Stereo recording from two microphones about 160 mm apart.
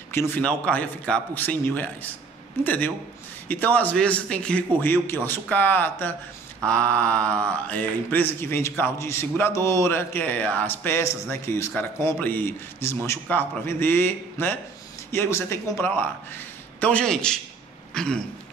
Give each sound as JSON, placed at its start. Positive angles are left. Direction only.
{"t": 0.1, "sound": "mantra", "side_deg": 15}
{"t": 16.8, "sound": "a man's voice", "side_deg": 5}